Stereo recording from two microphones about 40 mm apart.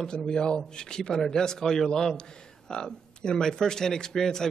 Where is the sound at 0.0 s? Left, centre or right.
Centre.